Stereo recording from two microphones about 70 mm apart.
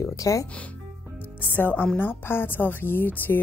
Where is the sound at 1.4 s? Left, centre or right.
Left.